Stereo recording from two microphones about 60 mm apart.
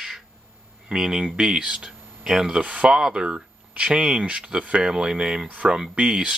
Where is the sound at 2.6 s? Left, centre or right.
Centre.